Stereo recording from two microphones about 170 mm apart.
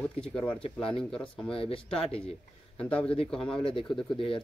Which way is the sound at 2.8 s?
5° left (ahead or behind).